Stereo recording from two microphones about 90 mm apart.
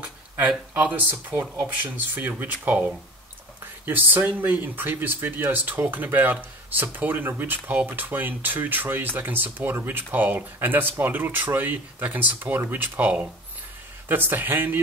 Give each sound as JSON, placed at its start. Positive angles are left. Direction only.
{"t": 0.0, "sound": "speech", "side_deg": -15}
{"t": 3.8, "sound": "speech", "side_deg": -20}